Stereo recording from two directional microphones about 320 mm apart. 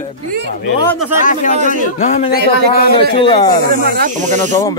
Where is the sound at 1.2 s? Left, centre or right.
Left.